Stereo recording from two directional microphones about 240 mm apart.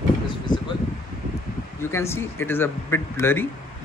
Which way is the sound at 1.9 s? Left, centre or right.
Centre.